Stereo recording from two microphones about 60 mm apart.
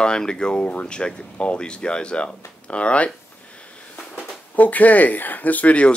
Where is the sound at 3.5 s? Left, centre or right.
Centre.